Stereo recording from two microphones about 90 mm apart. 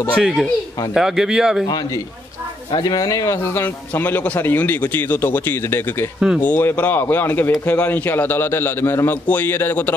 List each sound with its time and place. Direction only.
0.1 s speech: 5° right (ahead or behind)
2.7 s speech: 50° left (ahead or behind)
3.9 s a man's voice: 20° left (ahead or behind)
6.1 s speech: 5° right (ahead or behind)
6.4 s a man's voice: 20° left (ahead or behind)